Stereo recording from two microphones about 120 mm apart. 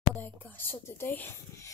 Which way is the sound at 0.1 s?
15° left (ahead or behind).